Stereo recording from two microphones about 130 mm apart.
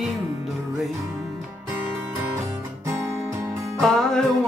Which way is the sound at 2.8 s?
20° right (ahead or behind).